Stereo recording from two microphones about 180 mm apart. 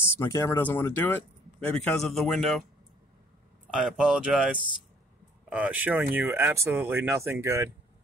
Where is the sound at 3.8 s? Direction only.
5° right (ahead or behind).